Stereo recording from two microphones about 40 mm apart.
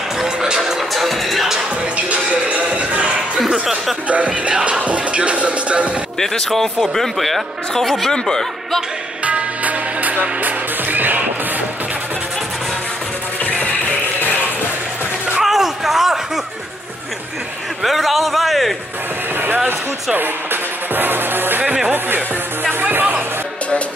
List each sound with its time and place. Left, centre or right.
0.4 s music: centre
2.0 s music: right
4.1 s music: right
6.1 s speech: centre
8.1 s speech: centre
9.2 s music: right
15.3 s a sound: centre
17.8 s speech: centre
20.9 s music: right